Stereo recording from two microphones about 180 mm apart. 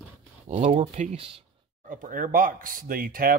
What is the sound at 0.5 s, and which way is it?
Speech, 40° right (ahead or behind).